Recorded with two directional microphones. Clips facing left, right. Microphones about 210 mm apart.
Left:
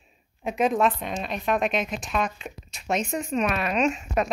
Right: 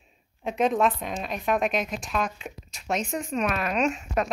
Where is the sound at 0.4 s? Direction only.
5° left (ahead or behind).